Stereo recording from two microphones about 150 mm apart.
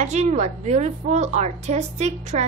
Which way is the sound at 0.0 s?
50° right (ahead or behind).